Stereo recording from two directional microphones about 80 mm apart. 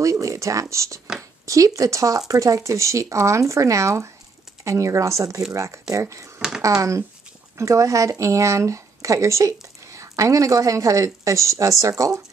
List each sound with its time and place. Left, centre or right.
0.0 s speech: right
1.4 s a sound: right
1.8 s speech: right